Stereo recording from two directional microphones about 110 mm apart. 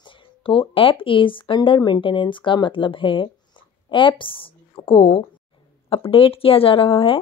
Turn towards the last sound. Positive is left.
turn(degrees=55)  # may be behind; listen again after turning